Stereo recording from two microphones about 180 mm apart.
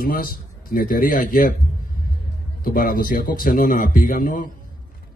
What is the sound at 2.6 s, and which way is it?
A man's voice, 50° left (ahead or behind).